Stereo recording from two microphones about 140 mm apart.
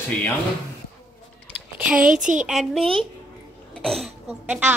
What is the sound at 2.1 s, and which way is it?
Speech, 65° right (ahead or behind).